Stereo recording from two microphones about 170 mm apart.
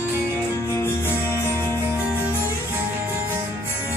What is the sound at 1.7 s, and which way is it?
Music, 10° right (ahead or behind).